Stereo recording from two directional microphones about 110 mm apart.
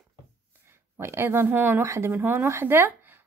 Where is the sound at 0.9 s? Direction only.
20° right (ahead or behind).